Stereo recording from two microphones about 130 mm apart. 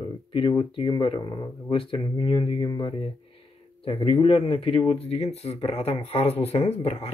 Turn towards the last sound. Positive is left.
turn(degrees=55)  # may be behind; listen again after turning